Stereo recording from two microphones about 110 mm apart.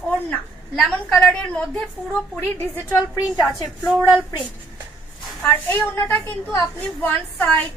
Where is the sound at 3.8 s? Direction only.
5° right (ahead or behind).